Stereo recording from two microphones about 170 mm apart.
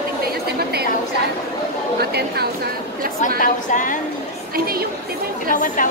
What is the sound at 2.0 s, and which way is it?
Speech, 70° right (ahead or behind).